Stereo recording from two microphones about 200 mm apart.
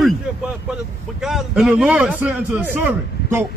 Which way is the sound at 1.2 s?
Centre (ahead or behind).